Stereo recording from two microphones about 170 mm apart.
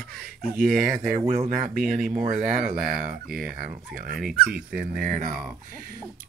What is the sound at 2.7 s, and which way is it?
Speech, 60° right (ahead or behind).